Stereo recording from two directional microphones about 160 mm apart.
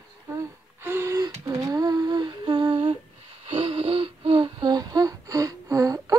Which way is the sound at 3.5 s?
40° right (ahead or behind).